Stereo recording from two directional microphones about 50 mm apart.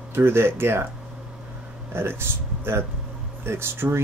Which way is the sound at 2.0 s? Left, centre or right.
Right.